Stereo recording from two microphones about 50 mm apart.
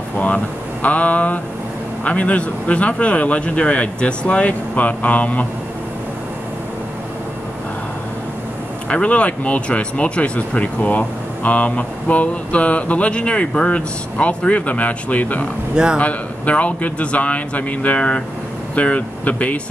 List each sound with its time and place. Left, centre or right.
0.8 s a sound: left
2.0 s speech: left
8.8 s speech: left
15.7 s speech: centre
16.0 s speech: left